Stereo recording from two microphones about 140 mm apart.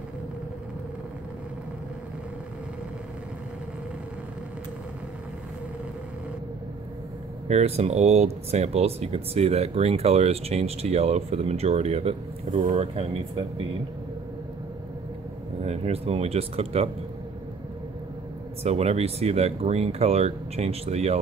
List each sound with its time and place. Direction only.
7.4 s speech: 50° right (ahead or behind)
15.6 s speech: 50° right (ahead or behind)
18.6 s speech: 50° right (ahead or behind)